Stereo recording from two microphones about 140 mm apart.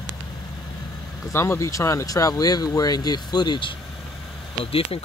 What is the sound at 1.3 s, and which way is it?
Speech, 20° left (ahead or behind).